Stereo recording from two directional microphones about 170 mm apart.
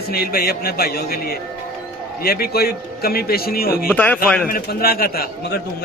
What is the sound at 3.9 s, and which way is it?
Speech, 10° left (ahead or behind).